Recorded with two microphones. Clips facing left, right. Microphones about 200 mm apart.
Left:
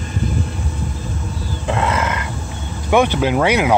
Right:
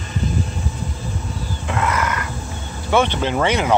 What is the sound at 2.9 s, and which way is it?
Speech, 10° left (ahead or behind).